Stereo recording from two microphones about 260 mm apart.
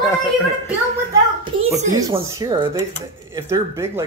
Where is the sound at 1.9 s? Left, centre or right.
Centre.